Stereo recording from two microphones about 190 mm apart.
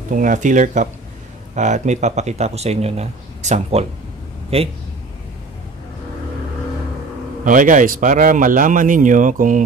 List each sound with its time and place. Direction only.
0.1 s speech: 45° right (ahead or behind)
7.4 s speech: 45° right (ahead or behind)